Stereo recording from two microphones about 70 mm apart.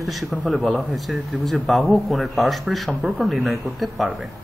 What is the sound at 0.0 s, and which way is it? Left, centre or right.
Speech, centre.